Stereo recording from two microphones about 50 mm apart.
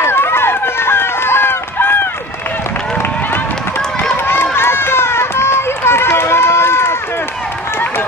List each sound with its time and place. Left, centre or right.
0.0 s run: left
4.3 s run: left